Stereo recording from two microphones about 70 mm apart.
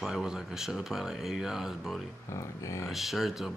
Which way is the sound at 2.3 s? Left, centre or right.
Left.